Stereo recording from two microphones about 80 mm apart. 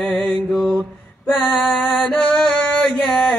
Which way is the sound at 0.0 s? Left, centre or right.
Centre.